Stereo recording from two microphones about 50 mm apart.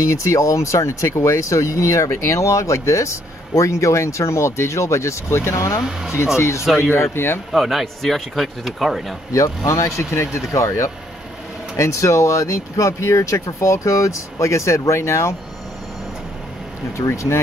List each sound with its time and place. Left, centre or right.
0.0 s speech: left
5.9 s speech: centre
6.1 s speech: left
6.6 s speech: centre
6.9 s speech: left
7.5 s speech: centre
9.3 s speech: left
16.9 s speech: left